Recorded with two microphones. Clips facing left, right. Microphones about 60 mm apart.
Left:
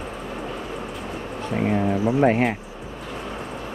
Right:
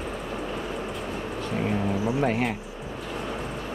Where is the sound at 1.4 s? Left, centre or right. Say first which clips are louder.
Left 5 dB; left.